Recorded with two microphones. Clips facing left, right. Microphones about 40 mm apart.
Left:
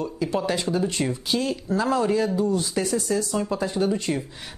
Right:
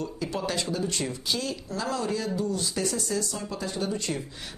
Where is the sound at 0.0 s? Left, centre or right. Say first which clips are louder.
Left 5 dB; centre.